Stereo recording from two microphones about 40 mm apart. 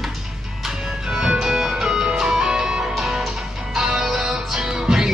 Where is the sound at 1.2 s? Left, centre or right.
Centre.